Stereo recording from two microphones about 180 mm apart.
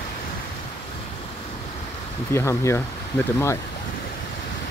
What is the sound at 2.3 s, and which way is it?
Speech, 15° left (ahead or behind).